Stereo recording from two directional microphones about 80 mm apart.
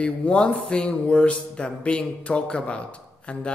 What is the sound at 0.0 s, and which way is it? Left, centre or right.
Speech, centre.